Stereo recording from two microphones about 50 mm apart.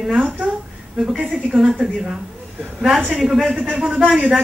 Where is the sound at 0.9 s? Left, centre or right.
Centre.